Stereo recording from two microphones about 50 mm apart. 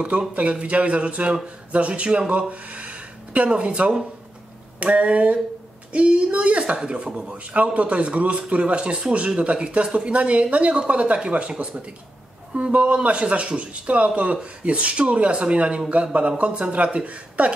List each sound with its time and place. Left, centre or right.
0.0 s speech: right